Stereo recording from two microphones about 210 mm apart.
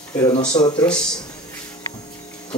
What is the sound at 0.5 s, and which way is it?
Speech, 20° left (ahead or behind).